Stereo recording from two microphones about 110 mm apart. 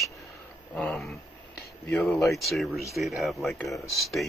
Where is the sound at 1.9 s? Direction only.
Centre (ahead or behind).